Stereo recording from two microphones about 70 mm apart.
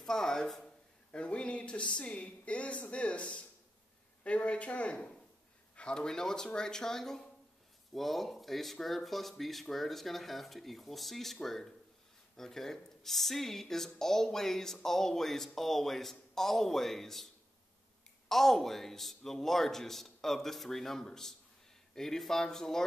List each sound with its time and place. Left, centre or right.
0.0 s speech: centre
18.3 s speech: centre